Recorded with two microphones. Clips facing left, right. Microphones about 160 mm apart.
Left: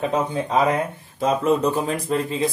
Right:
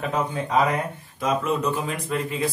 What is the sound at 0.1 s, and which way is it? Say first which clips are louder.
Speech: left 2 dB; 25° left (ahead or behind).